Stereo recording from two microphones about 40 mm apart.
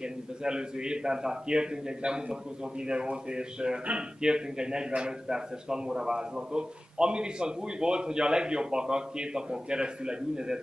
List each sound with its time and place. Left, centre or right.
0.0 s a man's voice: right